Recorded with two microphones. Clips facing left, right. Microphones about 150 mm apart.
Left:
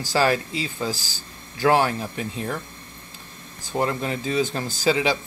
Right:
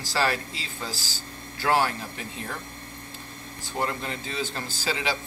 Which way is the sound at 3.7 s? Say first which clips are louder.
Left 5 dB; 35° left (ahead or behind).